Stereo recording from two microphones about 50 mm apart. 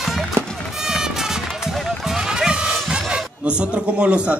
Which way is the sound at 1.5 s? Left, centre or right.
Centre.